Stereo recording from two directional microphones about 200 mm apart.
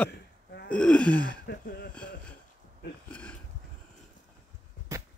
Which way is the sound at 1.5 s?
55° left (ahead or behind).